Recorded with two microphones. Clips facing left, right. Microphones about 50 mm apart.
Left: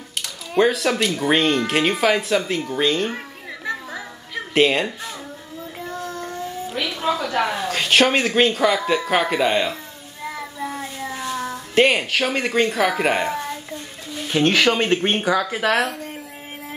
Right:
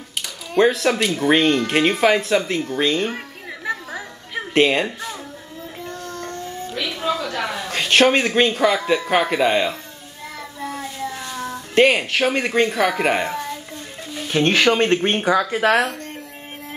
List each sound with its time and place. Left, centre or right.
0.6 s speech: centre
3.6 s music: centre
5.9 s child singing: centre
7.6 s speech: centre
10.2 s child singing: centre
14.2 s speech: centre
15.1 s speech: centre
15.7 s speech: centre